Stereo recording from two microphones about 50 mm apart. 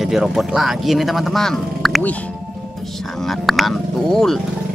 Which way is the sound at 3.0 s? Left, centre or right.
Centre.